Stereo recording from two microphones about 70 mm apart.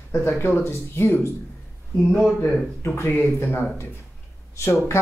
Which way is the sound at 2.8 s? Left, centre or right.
Left.